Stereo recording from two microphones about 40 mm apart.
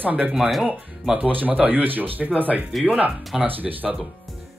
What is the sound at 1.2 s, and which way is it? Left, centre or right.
Speech, right.